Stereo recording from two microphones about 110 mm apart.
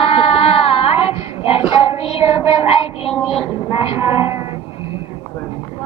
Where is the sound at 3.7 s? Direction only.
60° left (ahead or behind).